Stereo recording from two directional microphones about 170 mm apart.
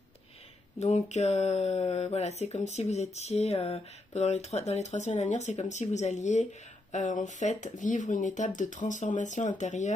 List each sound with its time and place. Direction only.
0.7 s speech: 40° left (ahead or behind)